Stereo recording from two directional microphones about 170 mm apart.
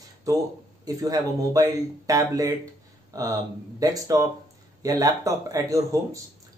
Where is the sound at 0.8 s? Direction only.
20° right (ahead or behind).